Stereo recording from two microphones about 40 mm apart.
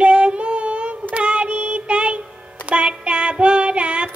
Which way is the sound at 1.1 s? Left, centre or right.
Right.